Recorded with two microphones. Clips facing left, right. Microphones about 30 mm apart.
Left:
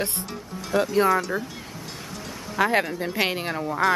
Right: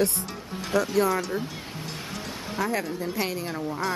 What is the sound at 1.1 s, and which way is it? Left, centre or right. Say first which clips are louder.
Speech: left 4 dB; centre.